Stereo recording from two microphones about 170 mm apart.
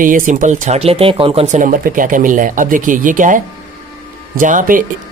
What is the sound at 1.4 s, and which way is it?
A man's voice, 50° right (ahead or behind).